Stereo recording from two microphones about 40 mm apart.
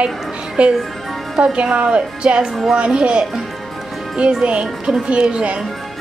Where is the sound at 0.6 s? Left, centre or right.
Right.